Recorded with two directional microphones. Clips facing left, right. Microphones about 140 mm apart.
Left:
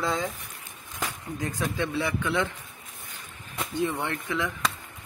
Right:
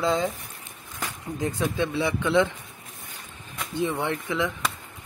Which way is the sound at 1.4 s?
20° right (ahead or behind).